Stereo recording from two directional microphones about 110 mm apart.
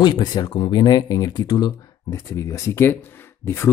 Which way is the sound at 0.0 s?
40° left (ahead or behind).